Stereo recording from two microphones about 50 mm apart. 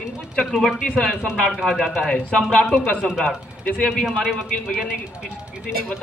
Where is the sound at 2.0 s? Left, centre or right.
Centre.